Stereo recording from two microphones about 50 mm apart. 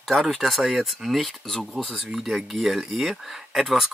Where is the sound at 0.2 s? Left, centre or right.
Centre.